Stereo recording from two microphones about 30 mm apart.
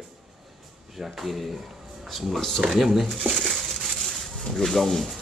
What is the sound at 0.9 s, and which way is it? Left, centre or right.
Speech, centre.